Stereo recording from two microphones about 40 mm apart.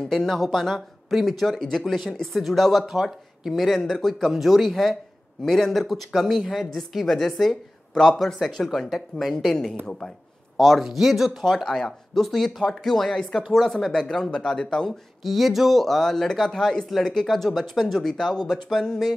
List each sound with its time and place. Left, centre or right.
0.0 s a woman's voice: centre
8.8 s speech: centre
9.8 s speech: centre
10.8 s speech: centre
11.4 s speech: centre
14.3 s speech: centre
14.9 s speech: centre
18.5 s speech: centre